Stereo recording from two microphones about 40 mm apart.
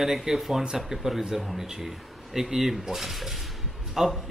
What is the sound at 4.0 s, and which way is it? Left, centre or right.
Speech, centre.